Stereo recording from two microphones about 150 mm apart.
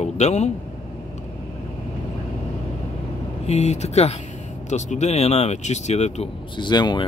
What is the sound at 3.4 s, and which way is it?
Speech, 45° left (ahead or behind).